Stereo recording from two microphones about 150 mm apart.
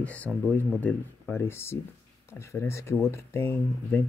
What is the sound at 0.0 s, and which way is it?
Speech, 10° left (ahead or behind).